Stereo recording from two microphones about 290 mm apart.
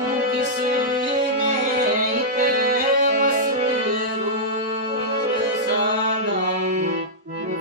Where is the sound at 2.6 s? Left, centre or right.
Right.